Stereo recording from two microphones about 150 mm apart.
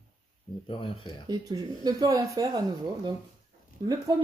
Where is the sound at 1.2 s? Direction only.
25° right (ahead or behind).